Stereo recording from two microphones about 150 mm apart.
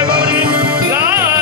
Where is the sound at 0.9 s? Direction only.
15° right (ahead or behind).